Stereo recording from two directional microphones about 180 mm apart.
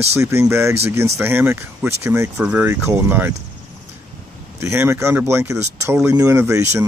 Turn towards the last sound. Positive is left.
turn(degrees=-15)  # may be behind; listen again after turning